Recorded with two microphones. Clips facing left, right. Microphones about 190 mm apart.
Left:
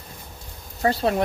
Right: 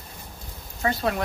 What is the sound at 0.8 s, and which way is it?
Speech, 30° left (ahead or behind).